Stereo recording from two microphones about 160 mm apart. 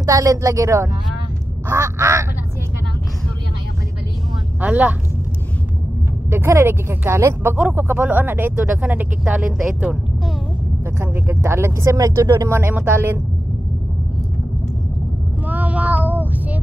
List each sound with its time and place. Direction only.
0.0 s speech: 20° right (ahead or behind)
4.6 s speech: 10° right (ahead or behind)
6.3 s speech: 15° right (ahead or behind)
11.0 s speech: 15° right (ahead or behind)
15.4 s child singing: 10° right (ahead or behind)